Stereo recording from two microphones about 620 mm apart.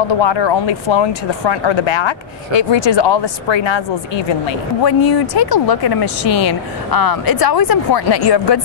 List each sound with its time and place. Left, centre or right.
0.1 s speech: left